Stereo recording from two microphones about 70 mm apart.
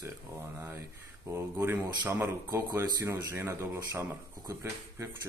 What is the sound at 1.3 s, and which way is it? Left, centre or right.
Speech, right.